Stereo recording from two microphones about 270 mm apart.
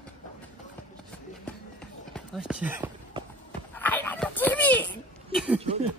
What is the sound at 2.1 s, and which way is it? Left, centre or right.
Speech, centre.